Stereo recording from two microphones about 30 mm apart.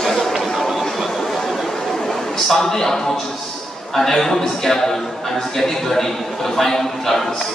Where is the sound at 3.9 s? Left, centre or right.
Centre.